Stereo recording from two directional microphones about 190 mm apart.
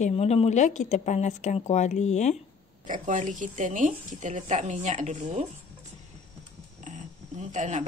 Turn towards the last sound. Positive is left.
turn(degrees=-40)  # may be behind; listen again after turning